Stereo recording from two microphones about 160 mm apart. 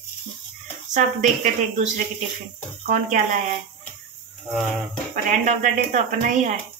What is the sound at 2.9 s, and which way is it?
Speech, 50° right (ahead or behind).